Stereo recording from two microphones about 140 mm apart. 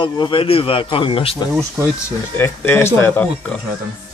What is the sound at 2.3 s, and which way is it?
Speech, 15° left (ahead or behind).